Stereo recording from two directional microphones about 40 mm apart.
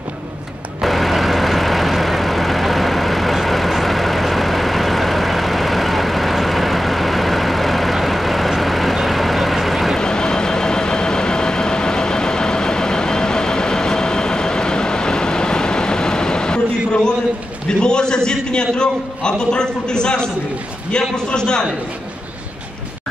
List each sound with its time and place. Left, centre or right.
0.7 s vehicle: centre
9.9 s vehicle: centre
17.6 s a sound: left